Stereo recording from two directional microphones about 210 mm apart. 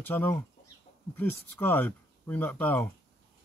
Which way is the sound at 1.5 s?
10° left (ahead or behind).